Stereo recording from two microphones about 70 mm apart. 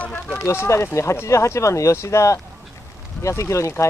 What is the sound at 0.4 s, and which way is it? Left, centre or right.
Speech, left.